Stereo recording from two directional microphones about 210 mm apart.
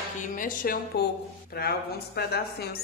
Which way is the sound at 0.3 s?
40° left (ahead or behind).